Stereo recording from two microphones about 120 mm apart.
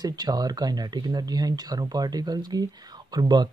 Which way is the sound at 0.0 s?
35° right (ahead or behind).